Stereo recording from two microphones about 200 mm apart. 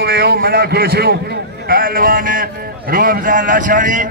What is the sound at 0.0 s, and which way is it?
A man's voice, 50° right (ahead or behind).